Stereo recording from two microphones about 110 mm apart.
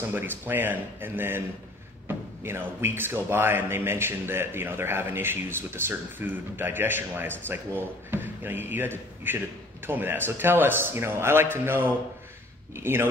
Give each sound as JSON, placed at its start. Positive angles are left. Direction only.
{"t": 0.1, "sound": "speech", "side_deg": -15}